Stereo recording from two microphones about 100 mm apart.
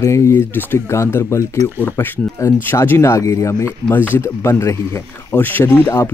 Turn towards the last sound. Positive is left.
turn(degrees=20)  # may be behind; listen again after turning